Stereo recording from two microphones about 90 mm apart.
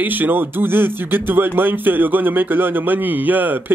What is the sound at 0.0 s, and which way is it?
Speech, 20° right (ahead or behind).